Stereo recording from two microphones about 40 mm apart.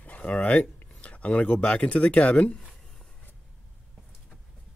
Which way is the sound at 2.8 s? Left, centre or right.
Centre.